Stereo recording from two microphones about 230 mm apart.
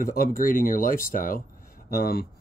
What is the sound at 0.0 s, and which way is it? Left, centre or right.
Speech, left.